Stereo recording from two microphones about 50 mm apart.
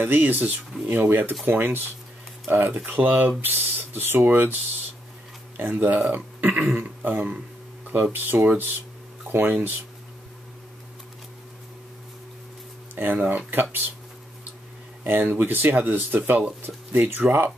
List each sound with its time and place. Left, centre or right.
0.0 s speech: right
5.6 s speech: right
12.9 s speech: right
15.0 s speech: right